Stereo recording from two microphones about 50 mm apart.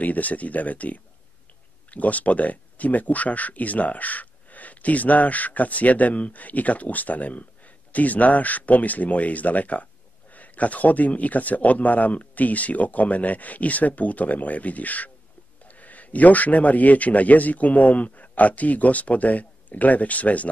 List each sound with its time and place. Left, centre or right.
0.0 s speech: left